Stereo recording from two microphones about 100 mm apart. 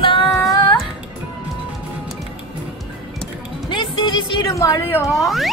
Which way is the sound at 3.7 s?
55° left (ahead or behind).